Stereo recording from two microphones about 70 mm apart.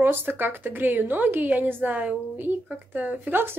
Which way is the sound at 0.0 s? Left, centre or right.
Right.